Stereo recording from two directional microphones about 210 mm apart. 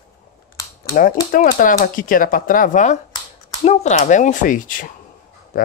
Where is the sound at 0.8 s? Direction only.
40° left (ahead or behind).